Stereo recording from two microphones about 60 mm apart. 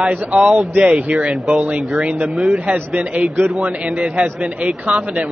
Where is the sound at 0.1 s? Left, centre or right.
Right.